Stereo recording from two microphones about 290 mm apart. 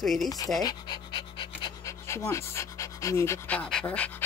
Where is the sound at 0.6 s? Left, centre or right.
Centre.